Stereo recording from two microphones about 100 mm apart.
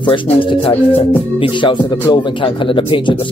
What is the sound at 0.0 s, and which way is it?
Speech, 55° left (ahead or behind).